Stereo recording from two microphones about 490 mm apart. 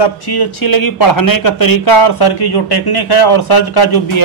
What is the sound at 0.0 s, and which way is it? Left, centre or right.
Speech, left.